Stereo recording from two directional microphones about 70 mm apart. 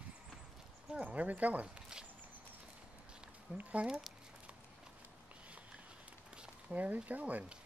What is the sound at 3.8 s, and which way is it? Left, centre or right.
Speech, centre.